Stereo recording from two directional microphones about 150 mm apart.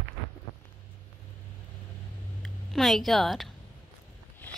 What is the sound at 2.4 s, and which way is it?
Speech, centre (ahead or behind).